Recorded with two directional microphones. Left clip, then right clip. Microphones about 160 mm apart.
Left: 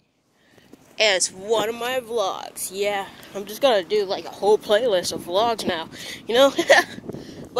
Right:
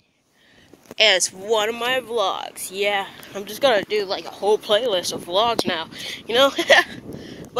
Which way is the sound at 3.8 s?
45° left (ahead or behind).